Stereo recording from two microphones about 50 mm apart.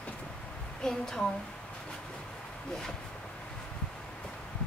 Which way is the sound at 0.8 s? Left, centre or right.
Centre.